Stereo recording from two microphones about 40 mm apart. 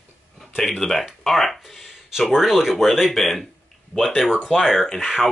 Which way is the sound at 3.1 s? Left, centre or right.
Centre.